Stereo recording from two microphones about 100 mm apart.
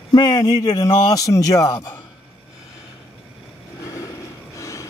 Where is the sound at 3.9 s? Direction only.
35° left (ahead or behind).